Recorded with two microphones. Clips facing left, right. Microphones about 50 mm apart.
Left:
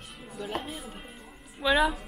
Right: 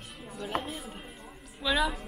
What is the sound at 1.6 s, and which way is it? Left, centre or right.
Speech, centre.